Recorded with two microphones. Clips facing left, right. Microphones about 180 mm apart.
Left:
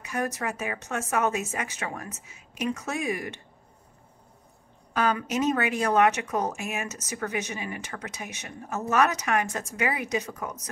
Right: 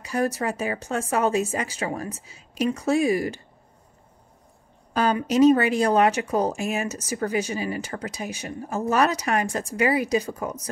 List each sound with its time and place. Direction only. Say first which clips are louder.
0.0 s speech: right 5 dB; 35° right (ahead or behind)
5.2 s speech: right 9 dB; 35° right (ahead or behind)